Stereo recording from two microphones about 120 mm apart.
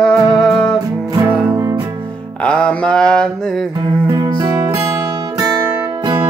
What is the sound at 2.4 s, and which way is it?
Mantra, 10° left (ahead or behind).